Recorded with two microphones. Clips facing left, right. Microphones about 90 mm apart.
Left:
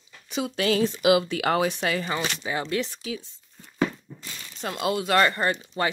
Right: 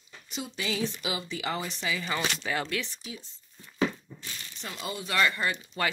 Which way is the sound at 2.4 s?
20° left (ahead or behind).